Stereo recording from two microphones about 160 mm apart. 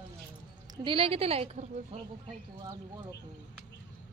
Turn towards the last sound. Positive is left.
turn(degrees=-25)  # may be behind; listen again after turning